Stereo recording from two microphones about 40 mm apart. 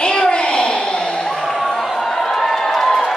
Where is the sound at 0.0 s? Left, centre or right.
Left.